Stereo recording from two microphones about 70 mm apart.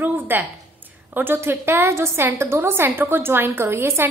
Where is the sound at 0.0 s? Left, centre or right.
Right.